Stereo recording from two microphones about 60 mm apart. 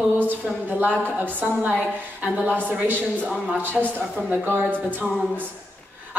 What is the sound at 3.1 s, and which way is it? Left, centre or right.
Speech, left.